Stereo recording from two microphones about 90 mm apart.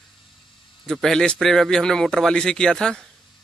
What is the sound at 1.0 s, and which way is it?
Speech, 10° left (ahead or behind).